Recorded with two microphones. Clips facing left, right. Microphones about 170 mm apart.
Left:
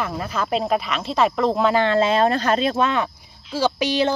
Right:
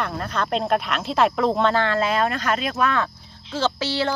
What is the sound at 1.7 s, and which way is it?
Speech, 20° left (ahead or behind).